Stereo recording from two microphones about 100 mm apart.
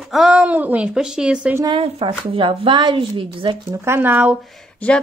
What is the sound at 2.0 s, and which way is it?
Speech, 60° right (ahead or behind).